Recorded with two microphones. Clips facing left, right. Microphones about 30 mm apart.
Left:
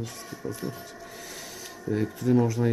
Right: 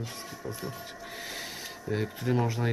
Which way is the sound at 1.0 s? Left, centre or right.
Right.